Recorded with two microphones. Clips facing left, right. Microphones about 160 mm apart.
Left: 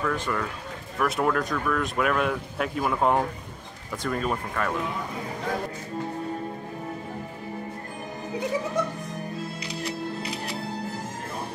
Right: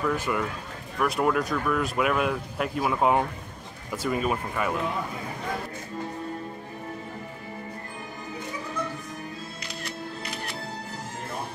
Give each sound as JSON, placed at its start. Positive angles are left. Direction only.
{"t": 0.0, "sound": "speech", "side_deg": -10}
{"t": 0.9, "sound": "speech", "side_deg": 0}
{"t": 8.8, "sound": "speech", "side_deg": 90}